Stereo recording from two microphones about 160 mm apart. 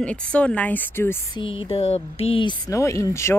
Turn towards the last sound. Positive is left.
turn(degrees=15)  # may be behind; listen again after turning